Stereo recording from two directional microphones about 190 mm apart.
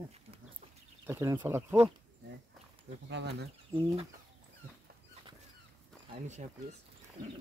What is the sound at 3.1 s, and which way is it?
Speech, 65° right (ahead or behind).